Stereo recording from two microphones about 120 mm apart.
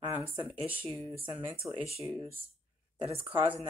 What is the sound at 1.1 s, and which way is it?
Speech, 50° right (ahead or behind).